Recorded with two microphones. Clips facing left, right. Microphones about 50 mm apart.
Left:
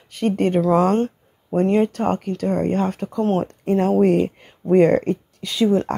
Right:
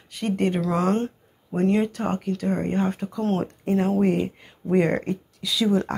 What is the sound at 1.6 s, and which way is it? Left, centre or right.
Speech, left.